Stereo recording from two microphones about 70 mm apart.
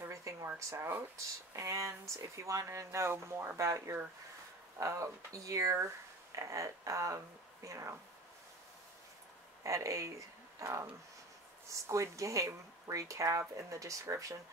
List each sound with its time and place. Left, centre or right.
0.1 s a sound: right
0.7 s speech: right
9.6 s speech: right